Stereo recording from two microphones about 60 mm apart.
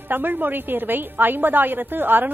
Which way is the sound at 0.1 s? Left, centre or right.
Right.